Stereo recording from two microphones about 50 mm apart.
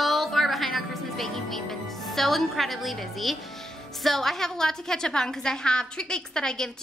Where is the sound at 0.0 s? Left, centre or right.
Centre.